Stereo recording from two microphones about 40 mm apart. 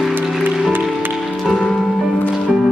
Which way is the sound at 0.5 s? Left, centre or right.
Centre.